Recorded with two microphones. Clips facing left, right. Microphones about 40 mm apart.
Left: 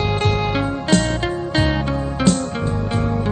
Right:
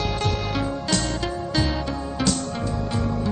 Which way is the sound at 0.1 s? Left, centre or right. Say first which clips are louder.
Left 6 dB; left.